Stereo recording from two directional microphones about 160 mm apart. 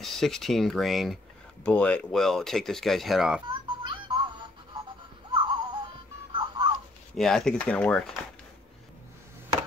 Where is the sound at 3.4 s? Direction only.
25° right (ahead or behind).